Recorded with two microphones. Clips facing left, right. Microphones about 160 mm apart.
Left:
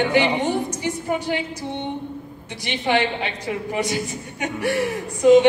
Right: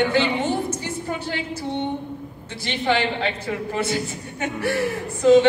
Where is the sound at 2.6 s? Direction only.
15° left (ahead or behind).